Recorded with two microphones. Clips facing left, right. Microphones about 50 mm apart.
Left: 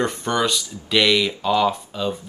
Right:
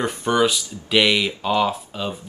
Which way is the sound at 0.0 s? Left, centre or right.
Centre.